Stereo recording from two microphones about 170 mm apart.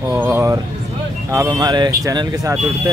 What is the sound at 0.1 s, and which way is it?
Speech, 10° right (ahead or behind).